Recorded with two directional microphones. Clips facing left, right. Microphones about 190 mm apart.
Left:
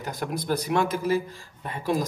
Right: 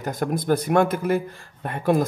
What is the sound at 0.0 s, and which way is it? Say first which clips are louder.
Speech: right 6 dB; 50° right (ahead or behind).